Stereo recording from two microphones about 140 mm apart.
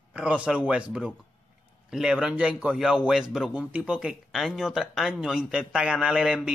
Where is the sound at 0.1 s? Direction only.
10° right (ahead or behind).